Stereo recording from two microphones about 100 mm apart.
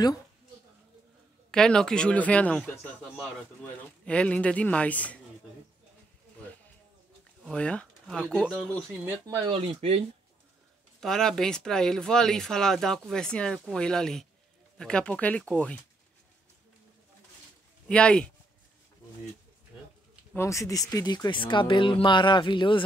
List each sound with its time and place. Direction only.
1.5 s speech: 5° left (ahead or behind)
7.4 s speech: 10° left (ahead or behind)
9.4 s speech: 60° right (ahead or behind); by 10.0 s 75° right (ahead or behind)
11.0 s speech: 5° left (ahead or behind)
17.8 s speech: 10° left (ahead or behind)
20.3 s speech: 30° left (ahead or behind); by 22.8 s 50° left (ahead or behind)